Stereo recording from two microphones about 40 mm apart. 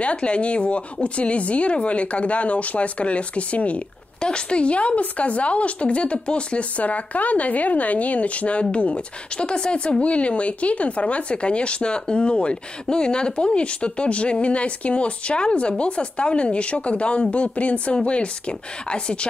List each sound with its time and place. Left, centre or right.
0.0 s a woman's voice: left
4.2 s a woman's voice: left